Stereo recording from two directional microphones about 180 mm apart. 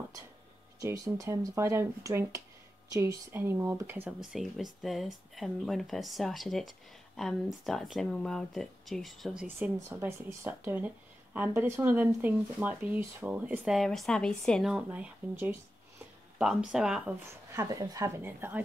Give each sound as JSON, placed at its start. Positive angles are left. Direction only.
{"t": 0.7, "sound": "speech", "side_deg": -20}
{"t": 17.5, "sound": "speech", "side_deg": -15}